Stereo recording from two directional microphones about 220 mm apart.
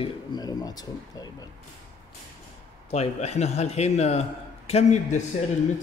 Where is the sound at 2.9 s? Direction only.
30° left (ahead or behind).